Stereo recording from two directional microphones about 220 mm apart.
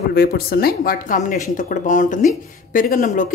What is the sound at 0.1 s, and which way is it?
A woman's voice, 45° left (ahead or behind).